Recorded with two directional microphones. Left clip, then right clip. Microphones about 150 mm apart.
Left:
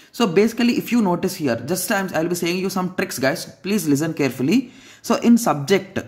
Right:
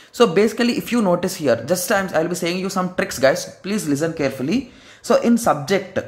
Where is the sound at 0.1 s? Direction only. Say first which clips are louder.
Right 3 dB; 15° left (ahead or behind).